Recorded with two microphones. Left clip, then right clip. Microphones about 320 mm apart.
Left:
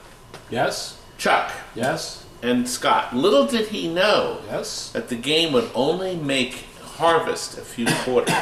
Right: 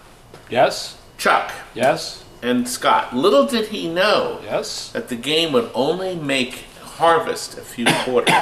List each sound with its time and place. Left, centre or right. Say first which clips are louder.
1.2 s speech: right 2 dB; centre
4.3 s speech: right 4 dB; centre
4.6 s speech: right 2 dB; centre